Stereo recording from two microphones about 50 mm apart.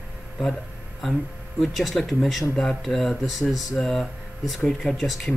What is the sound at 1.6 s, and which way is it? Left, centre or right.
Speech, centre.